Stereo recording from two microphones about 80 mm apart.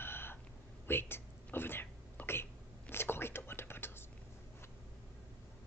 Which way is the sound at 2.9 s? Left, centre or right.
Left.